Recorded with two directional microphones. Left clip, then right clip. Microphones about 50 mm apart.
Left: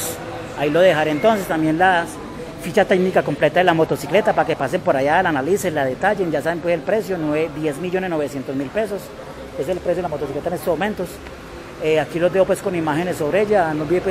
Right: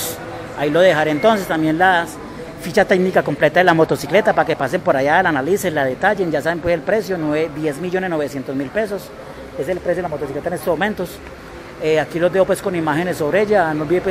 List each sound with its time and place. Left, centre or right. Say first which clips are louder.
0.7 s speech: right 2 dB; right
11.8 s speech: right 1 dB; right